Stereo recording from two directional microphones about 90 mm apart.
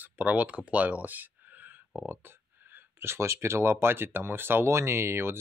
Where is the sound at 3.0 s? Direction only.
30° right (ahead or behind).